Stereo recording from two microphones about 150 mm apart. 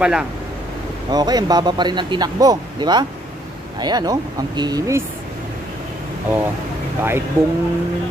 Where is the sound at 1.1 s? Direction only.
25° right (ahead or behind).